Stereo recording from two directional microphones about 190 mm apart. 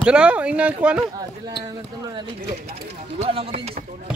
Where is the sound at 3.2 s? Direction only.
30° right (ahead or behind).